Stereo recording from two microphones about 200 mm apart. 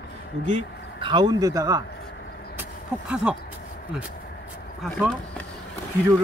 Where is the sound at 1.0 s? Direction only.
20° right (ahead or behind).